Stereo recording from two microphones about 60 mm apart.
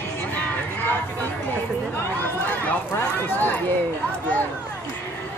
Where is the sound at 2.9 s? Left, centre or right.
Left.